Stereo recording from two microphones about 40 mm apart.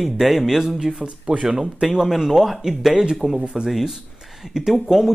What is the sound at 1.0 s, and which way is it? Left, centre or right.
Speech, right.